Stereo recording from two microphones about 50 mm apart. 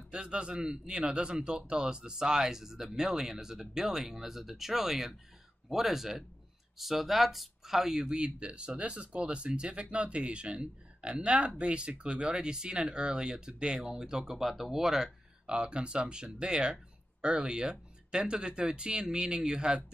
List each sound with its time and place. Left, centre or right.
0.1 s speech: centre
15.5 s speech: right